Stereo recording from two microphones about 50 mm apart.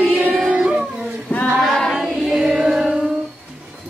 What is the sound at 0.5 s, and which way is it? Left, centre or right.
Dog, centre.